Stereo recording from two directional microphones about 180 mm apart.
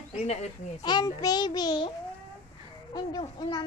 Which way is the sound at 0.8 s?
20° left (ahead or behind).